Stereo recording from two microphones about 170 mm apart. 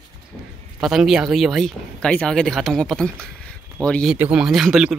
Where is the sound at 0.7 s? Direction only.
Centre (ahead or behind).